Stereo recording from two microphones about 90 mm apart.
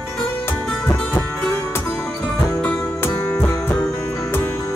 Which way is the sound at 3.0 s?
25° left (ahead or behind).